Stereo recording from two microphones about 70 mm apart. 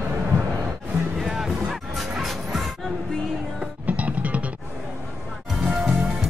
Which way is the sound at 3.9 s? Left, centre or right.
Centre.